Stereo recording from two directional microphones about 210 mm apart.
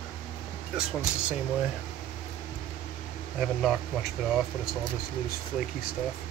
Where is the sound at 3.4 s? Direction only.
Centre (ahead or behind).